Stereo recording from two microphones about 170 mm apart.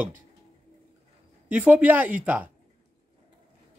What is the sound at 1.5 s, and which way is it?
Speech, 10° right (ahead or behind).